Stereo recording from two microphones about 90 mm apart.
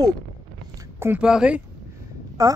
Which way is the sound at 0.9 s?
25° right (ahead or behind).